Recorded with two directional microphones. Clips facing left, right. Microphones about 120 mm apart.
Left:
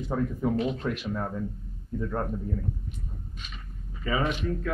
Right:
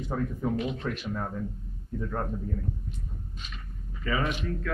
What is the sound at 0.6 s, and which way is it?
Speech, 30° left (ahead or behind).